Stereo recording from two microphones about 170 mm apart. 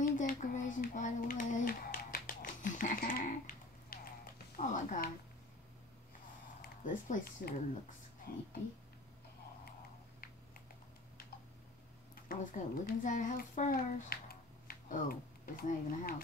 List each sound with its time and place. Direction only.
0.0 s a sound: 50° left (ahead or behind)
4.8 s a child's voice: 50° left (ahead or behind)
6.6 s speech: 50° left (ahead or behind)
8.3 s speech: 65° left (ahead or behind)
12.3 s a child's voice: 55° left (ahead or behind)
14.0 s a sound: 60° left (ahead or behind)